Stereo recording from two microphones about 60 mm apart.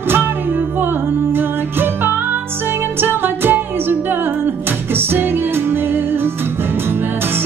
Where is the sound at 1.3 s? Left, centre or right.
Right.